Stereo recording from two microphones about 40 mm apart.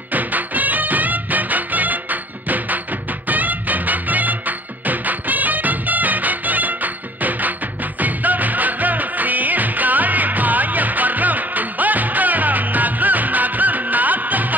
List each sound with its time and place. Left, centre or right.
0.1 s music: right